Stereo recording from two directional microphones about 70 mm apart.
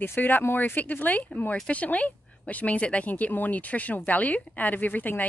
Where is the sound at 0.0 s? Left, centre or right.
Left.